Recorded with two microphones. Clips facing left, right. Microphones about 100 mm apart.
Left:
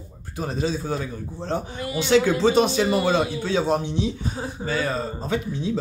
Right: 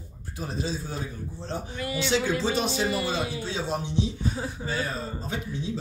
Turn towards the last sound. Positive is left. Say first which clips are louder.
# left 7 dB
turn(degrees=90)